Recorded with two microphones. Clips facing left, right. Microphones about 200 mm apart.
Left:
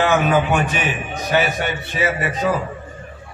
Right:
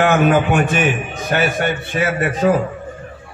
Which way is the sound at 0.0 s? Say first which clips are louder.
Right 3 dB; 50° right (ahead or behind).